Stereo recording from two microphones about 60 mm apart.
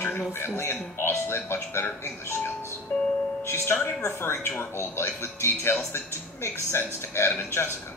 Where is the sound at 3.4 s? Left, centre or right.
Left.